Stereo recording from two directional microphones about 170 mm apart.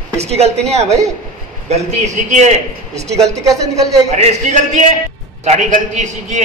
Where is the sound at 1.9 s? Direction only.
45° right (ahead or behind).